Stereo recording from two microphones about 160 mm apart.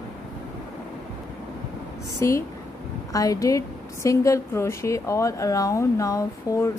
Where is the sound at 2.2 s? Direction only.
15° left (ahead or behind).